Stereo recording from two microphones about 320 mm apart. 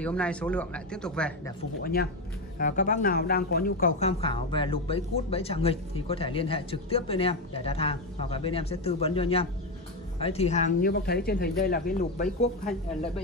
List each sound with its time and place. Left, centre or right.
0.0 s speech: centre
1.8 s speech: left